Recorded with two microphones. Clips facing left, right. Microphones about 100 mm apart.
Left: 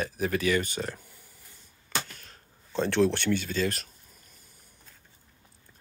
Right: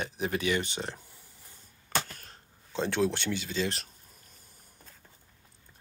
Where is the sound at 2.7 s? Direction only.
15° right (ahead or behind).